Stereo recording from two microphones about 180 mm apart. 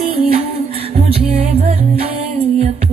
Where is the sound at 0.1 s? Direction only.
30° right (ahead or behind).